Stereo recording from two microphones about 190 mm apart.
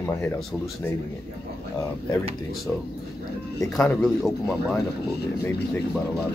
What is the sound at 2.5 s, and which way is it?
A man's voice, centre (ahead or behind).